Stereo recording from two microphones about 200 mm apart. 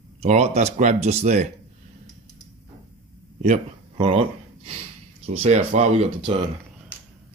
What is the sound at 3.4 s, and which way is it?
Speech, 30° right (ahead or behind).